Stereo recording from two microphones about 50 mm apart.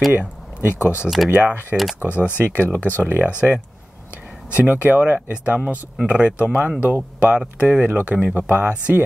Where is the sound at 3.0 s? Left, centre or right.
Right.